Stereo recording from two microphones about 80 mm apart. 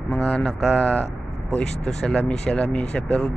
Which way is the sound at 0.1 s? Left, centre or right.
Centre.